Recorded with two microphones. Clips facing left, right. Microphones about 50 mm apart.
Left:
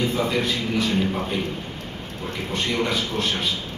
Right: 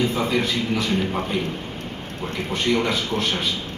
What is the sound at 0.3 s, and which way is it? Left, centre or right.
Speech, centre.